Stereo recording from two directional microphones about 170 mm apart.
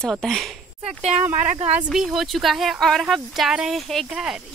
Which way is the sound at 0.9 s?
40° right (ahead or behind).